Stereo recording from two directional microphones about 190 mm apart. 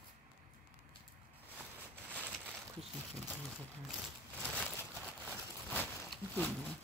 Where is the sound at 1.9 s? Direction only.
10° right (ahead or behind).